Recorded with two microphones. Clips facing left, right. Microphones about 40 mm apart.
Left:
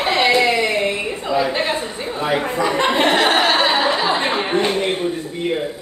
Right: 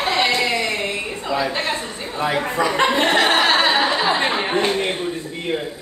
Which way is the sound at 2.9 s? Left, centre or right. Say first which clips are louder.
Left 1 dB; centre.